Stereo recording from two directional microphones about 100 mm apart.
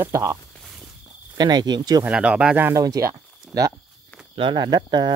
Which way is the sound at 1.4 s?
45° right (ahead or behind).